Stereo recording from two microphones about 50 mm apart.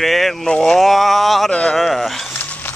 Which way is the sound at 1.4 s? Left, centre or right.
Left.